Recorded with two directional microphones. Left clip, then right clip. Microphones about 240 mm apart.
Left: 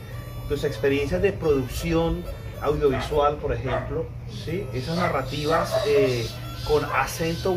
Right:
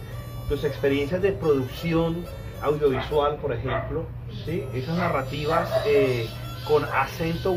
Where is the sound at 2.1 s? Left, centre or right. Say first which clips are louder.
Left 1 dB; centre.